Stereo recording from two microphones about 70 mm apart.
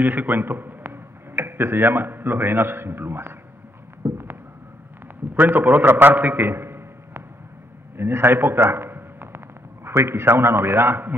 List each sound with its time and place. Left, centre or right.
0.0 s a man's voice: right
4.0 s a sound: right
5.3 s a man's voice: right